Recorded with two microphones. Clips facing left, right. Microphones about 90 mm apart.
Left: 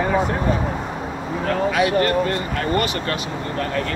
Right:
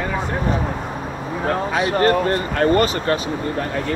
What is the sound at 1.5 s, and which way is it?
Speech, 30° right (ahead or behind).